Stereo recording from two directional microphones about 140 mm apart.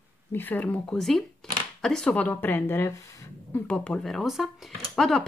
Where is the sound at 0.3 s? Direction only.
15° left (ahead or behind).